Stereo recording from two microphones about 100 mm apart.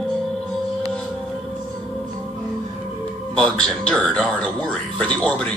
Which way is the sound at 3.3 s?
10° left (ahead or behind).